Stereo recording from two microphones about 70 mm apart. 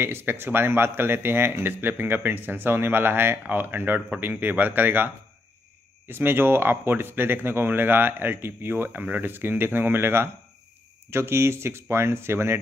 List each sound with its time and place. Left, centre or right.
0.0 s speech: right